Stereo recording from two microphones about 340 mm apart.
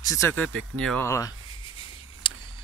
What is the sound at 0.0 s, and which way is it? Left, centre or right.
Speech, centre.